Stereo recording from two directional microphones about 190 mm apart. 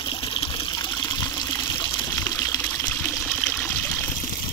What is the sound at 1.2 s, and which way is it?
Water, 15° left (ahead or behind).